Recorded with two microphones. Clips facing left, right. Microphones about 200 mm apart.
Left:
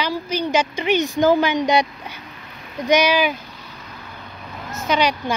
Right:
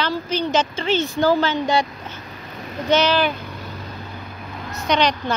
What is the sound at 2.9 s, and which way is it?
Speech, 10° left (ahead or behind).